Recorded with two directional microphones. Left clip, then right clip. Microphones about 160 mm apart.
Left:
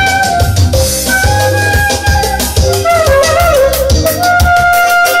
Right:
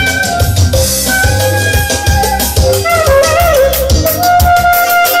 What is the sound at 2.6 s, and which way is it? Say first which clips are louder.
Music: left 1 dB; 10° right (ahead or behind).